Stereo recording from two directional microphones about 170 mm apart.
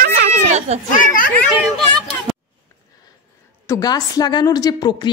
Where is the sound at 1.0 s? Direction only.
55° left (ahead or behind).